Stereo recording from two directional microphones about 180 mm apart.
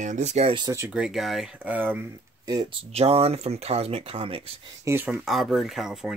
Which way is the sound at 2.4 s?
20° right (ahead or behind).